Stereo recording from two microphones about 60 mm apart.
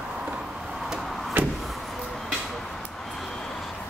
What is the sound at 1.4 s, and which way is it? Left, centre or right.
Vehicle, right.